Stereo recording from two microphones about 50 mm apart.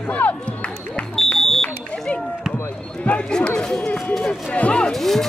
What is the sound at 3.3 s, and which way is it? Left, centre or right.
Speech, centre.